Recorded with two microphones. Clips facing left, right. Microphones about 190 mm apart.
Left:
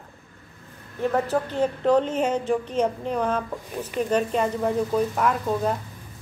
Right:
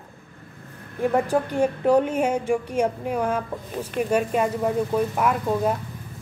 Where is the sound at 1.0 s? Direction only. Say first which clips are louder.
Right 2 dB; 15° right (ahead or behind).